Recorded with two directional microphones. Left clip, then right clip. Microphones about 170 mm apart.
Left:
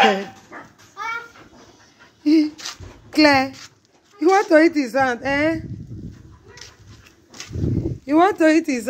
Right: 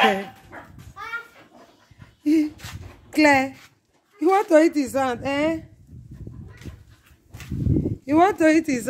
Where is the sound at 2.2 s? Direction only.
10° right (ahead or behind).